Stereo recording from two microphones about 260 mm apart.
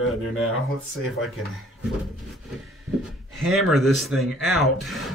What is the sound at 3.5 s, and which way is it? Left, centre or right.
Speech, centre.